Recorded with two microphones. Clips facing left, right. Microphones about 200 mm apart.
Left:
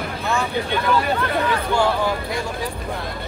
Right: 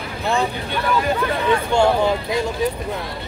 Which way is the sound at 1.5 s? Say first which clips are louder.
Right 7 dB; 25° right (ahead or behind).